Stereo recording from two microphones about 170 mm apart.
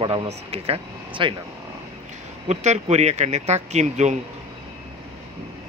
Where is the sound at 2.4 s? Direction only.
40° right (ahead or behind).